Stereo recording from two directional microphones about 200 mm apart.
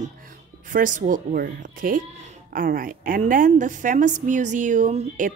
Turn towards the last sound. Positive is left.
turn(degrees=-40)  # may be behind; listen again after turning